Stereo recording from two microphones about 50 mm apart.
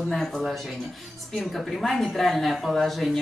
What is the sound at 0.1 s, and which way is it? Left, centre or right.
Speech, centre.